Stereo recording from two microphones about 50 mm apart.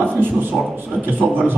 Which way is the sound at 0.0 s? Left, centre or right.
Right.